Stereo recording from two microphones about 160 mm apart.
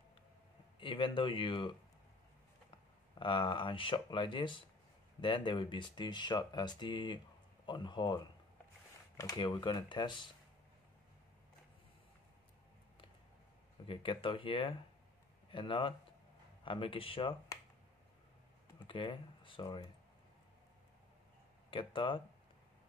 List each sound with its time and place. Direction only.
0.7 s speech: 30° left (ahead or behind)
3.2 s speech: 30° left (ahead or behind)
13.8 s speech: 35° left (ahead or behind)
18.9 s speech: 30° left (ahead or behind)
21.6 s speech: 30° left (ahead or behind)